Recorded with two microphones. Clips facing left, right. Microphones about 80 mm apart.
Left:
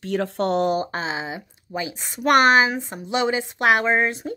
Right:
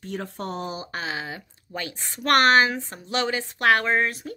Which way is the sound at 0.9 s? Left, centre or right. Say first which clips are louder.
Left 4 dB; left.